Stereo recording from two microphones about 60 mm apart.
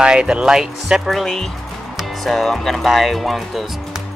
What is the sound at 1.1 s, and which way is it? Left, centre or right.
Speech, centre.